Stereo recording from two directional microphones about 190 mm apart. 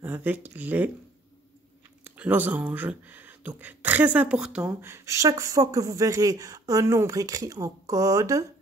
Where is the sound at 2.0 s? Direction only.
10° right (ahead or behind).